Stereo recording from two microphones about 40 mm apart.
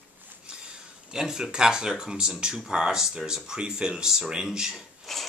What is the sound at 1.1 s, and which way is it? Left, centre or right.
Speech, centre.